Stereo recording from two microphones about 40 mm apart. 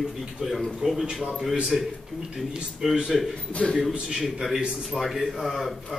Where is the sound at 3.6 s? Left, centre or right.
Left.